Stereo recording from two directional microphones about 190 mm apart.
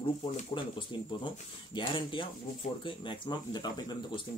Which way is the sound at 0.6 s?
25° left (ahead or behind).